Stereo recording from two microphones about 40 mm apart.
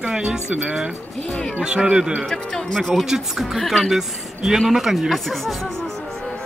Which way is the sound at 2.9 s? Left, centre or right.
Centre.